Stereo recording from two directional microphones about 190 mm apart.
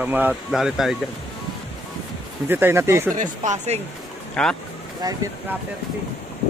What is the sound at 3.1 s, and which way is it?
Speech, 40° right (ahead or behind).